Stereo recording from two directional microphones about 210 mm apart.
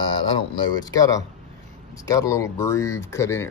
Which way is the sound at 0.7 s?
15° left (ahead or behind).